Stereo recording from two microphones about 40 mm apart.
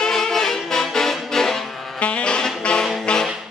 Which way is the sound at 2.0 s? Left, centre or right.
Left.